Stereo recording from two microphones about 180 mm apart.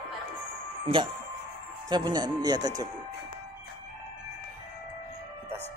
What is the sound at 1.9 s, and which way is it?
Speech, 25° right (ahead or behind).